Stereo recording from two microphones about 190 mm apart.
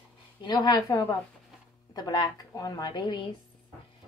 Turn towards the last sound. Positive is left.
turn(degrees=25)  # may be behind; listen again after turning